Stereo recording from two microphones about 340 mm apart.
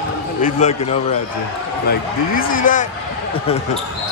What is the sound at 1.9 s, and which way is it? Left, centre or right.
A man's voice, left.